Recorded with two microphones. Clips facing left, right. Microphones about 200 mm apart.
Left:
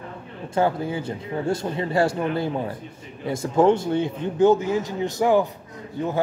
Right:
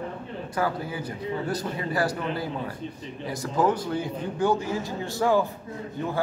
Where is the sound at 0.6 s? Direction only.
25° left (ahead or behind).